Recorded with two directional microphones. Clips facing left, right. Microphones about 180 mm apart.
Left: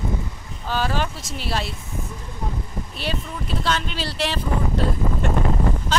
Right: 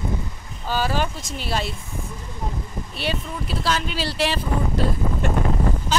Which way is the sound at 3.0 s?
5° right (ahead or behind).